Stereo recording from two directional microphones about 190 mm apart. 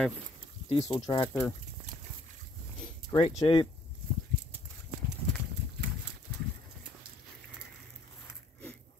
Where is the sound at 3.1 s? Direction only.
20° left (ahead or behind).